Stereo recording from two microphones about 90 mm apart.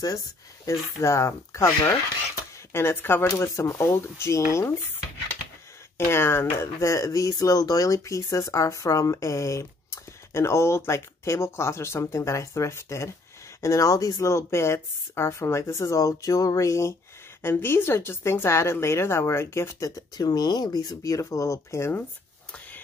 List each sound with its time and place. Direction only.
0.7 s a woman's voice: 35° left (ahead or behind)
5.9 s a woman's voice: 25° left (ahead or behind)
20.0 s speech: 50° left (ahead or behind); by 22.0 s 30° left (ahead or behind)